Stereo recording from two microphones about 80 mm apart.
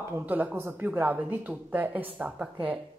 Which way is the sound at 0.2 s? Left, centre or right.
Centre.